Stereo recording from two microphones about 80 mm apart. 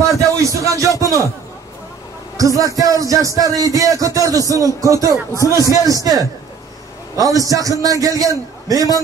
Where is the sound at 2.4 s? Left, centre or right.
Right.